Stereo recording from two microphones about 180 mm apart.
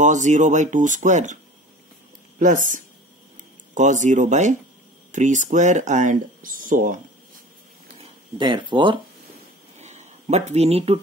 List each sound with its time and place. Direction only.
0.0 s speech: 40° right (ahead or behind)
3.7 s speech: 40° right (ahead or behind)
8.0 s speech: 25° right (ahead or behind)
9.8 s a sound: 40° right (ahead or behind)